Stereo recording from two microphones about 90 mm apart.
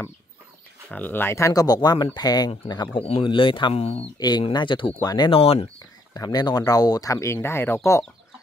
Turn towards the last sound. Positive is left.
turn(degrees=25)  # may be behind; listen again after turning